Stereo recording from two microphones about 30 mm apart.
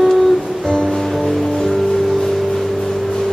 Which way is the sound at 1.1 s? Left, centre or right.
Centre.